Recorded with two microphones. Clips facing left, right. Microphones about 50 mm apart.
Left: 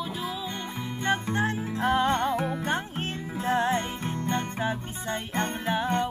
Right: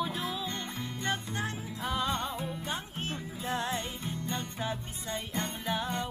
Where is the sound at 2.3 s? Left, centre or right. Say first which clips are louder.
Left 9 dB; left.